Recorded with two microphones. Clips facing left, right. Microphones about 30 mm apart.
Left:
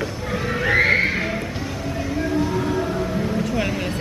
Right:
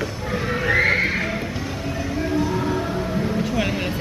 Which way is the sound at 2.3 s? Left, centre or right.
Centre.